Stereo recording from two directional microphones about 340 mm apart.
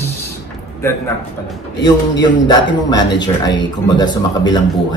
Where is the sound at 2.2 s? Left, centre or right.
Centre.